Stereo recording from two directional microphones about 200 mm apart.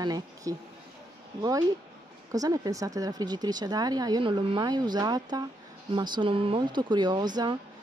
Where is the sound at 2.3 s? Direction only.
15° right (ahead or behind).